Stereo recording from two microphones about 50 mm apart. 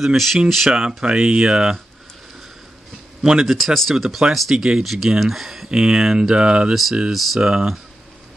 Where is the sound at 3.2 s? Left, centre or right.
Centre.